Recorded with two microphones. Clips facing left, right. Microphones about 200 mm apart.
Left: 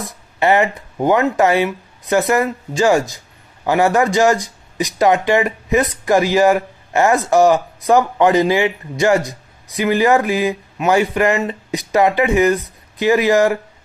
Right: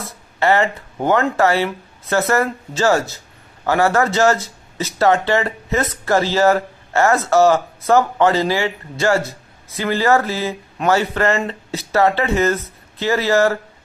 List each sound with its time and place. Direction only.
0.0 s speech: 15° left (ahead or behind)